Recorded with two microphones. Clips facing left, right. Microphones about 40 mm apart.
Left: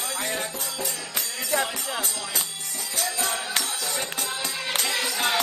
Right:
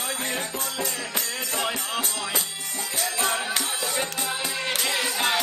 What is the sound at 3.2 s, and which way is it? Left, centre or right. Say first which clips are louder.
Music: right 4 dB; centre.